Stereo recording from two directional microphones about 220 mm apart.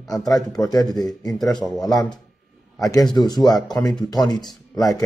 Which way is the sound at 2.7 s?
15° left (ahead or behind).